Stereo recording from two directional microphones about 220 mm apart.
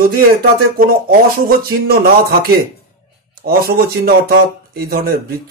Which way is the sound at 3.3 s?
45° right (ahead or behind).